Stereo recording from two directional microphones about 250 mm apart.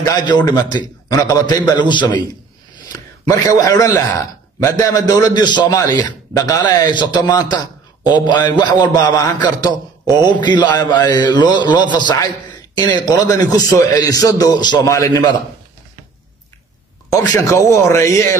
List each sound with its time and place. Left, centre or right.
0.0 s a man's voice: centre
17.1 s a man's voice: centre